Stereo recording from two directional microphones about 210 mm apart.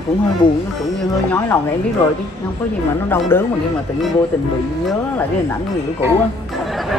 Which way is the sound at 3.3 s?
10° left (ahead or behind).